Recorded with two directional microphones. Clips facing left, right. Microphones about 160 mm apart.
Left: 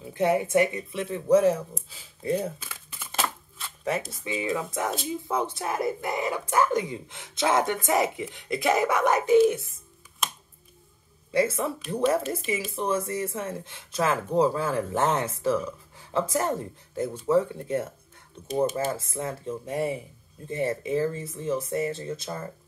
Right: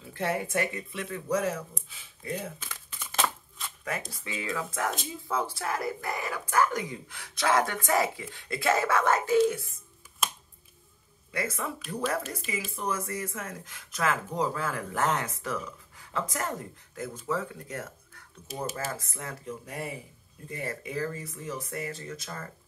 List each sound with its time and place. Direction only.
0.0 s speech: 20° left (ahead or behind)
4.2 s speech: 20° left (ahead or behind)
10.2 s a sound: centre (ahead or behind)
11.3 s speech: 25° left (ahead or behind)
12.7 s speech: 25° left (ahead or behind)
18.5 s speech: 5° right (ahead or behind)
18.9 s speech: 25° left (ahead or behind)